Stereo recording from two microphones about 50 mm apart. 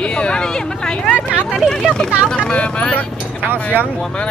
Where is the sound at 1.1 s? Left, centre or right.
Left.